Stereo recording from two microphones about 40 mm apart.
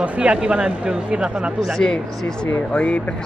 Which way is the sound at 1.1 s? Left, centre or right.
Right.